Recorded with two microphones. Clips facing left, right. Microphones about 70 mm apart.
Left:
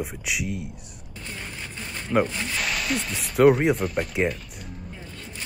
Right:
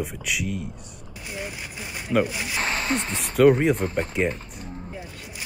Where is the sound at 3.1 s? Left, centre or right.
Centre.